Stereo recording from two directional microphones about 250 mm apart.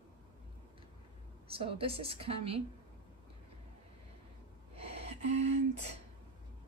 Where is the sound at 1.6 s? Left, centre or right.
Right.